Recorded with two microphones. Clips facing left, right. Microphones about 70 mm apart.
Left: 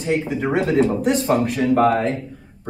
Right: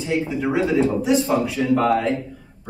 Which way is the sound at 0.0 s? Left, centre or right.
Left.